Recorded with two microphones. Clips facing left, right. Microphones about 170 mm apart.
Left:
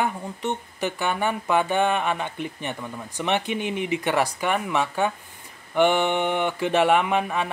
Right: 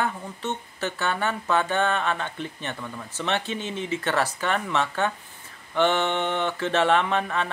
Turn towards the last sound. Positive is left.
turn(degrees=15)  # may be behind; listen again after turning